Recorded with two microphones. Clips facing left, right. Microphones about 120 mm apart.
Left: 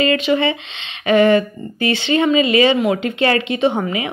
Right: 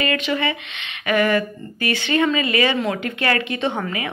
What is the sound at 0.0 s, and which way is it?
Speech, 25° left (ahead or behind).